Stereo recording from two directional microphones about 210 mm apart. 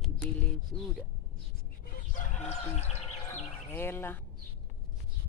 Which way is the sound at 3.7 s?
10° left (ahead or behind).